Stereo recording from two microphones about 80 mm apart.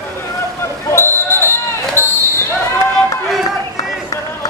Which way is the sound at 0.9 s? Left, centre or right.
Left.